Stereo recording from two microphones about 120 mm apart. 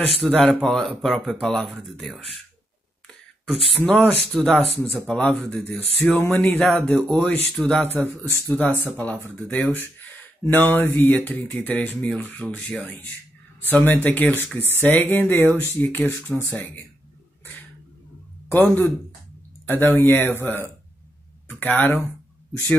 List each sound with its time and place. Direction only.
0.2 s speech: centre (ahead or behind)
3.1 s a sound: centre (ahead or behind)
4.3 s speech: 5° left (ahead or behind)
7.8 s speech: 15° left (ahead or behind)
18.5 s speech: 15° left (ahead or behind)
21.5 s speech: 15° left (ahead or behind)